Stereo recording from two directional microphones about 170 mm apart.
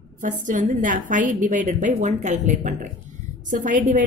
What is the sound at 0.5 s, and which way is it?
A woman's voice, 50° right (ahead or behind).